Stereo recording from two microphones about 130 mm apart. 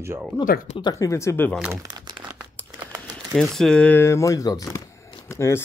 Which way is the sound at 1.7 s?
30° right (ahead or behind).